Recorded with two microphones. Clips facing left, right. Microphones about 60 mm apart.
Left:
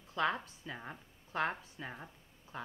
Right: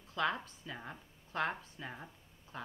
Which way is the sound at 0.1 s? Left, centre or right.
Centre.